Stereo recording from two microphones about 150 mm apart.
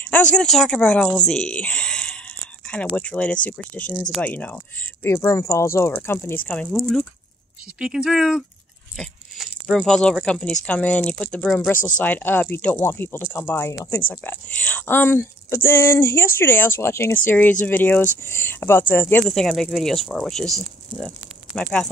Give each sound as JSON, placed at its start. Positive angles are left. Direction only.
{"t": 0.0, "sound": "speech", "side_deg": 5}
{"t": 8.9, "sound": "a sound", "side_deg": 0}
{"t": 10.2, "sound": "speech", "side_deg": 5}
{"t": 19.2, "sound": "speech", "side_deg": 0}
{"t": 21.5, "sound": "speech", "side_deg": 5}